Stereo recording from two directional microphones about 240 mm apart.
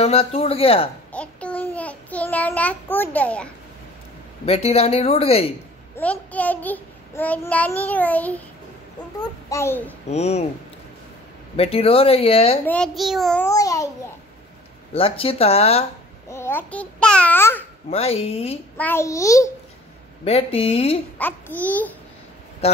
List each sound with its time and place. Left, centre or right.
0.0 s speech: left
1.1 s child singing: centre
4.5 s speech: left
5.9 s a child's voice: centre
9.5 s a child's voice: centre
10.0 s speech: left
11.5 s speech: left
12.6 s a child's voice: centre
15.0 s speech: left
16.3 s a child's voice: centre
17.8 s speech: left
18.8 s a child's voice: centre
20.2 s speech: left
21.2 s a child's voice: centre